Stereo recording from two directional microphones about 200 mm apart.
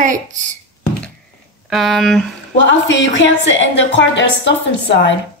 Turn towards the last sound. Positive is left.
turn(degrees=65)  # may be behind; listen again after turning